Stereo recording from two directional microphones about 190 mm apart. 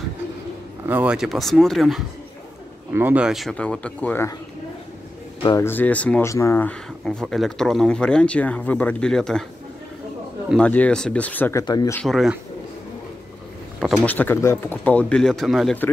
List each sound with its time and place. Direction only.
0.8 s speech: 5° right (ahead or behind); by 4.4 s 10° left (ahead or behind)
5.4 s speech: 15° left (ahead or behind)
10.5 s speech: 5° left (ahead or behind)
11.6 s speech: 20° left (ahead or behind)
12.0 s speech: centre (ahead or behind)
13.7 s speech: 5° left (ahead or behind)